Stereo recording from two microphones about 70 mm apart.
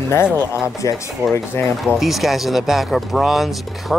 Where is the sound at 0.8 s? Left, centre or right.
Left.